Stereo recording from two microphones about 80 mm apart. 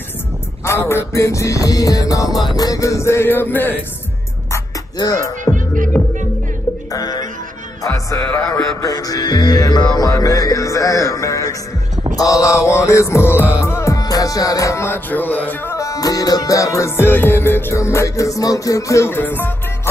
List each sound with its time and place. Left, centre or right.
0.7 s music: left
4.9 s speech: left
5.5 s music: left
6.9 s music: left
10.1 s music: left
13.9 s music: left
14.9 s music: left
15.7 s music: left
19.0 s music: left